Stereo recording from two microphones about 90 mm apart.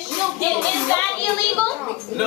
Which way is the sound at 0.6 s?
15° left (ahead or behind).